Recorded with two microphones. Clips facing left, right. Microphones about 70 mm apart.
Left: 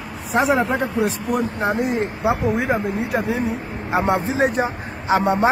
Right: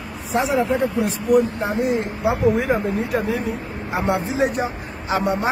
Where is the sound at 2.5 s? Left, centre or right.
Left.